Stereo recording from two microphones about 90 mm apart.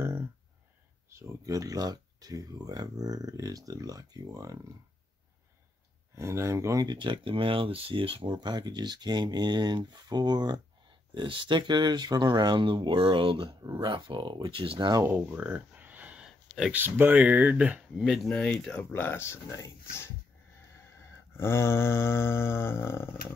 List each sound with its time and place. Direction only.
1.1 s speech: 35° right (ahead or behind)
6.1 s speech: 30° right (ahead or behind)
6.9 s speech: 65° right (ahead or behind); by 8.3 s 80° right
8.3 s speech: 55° right (ahead or behind)
14.5 s speech: 80° right
15.0 s a sound: 20° right (ahead or behind)
16.7 s speech: 25° right (ahead or behind)
17.9 s speech: centre (ahead or behind)
18.3 s speech: 15° left (ahead or behind)
18.7 s snoring: 20° left (ahead or behind)
21.4 s snoring: 30° left (ahead or behind)